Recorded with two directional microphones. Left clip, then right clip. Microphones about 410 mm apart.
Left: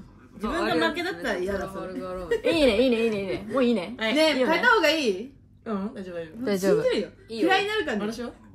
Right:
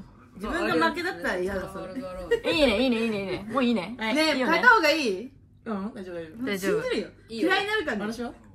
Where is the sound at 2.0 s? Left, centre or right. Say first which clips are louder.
Left 3 dB; left.